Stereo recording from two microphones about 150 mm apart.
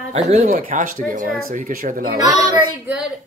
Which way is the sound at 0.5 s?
65° right (ahead or behind).